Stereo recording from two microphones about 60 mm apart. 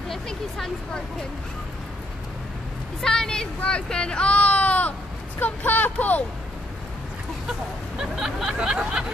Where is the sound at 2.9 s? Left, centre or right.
Centre.